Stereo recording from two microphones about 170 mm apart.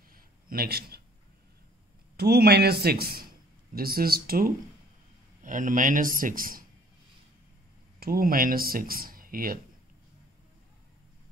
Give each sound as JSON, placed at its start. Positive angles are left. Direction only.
{"t": 0.1, "sound": "a sound", "side_deg": -60}
{"t": 2.1, "sound": "speech", "side_deg": -70}
{"t": 5.4, "sound": "speech", "side_deg": -50}
{"t": 8.0, "sound": "speech", "side_deg": -60}